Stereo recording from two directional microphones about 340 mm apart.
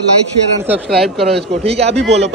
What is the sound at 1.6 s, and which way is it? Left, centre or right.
Speech, centre.